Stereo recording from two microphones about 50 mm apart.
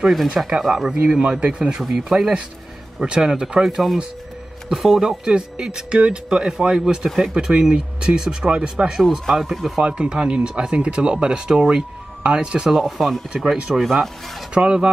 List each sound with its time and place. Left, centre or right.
0.6 s speech: centre
1.0 s speech: centre
3.6 s speech: centre
9.3 s speech: centre
9.8 s speech: centre